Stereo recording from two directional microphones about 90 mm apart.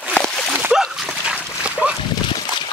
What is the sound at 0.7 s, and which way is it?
Dog, 10° right (ahead or behind).